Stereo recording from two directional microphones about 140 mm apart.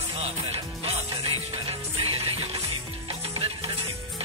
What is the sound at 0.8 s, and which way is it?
Music, 45° right (ahead or behind).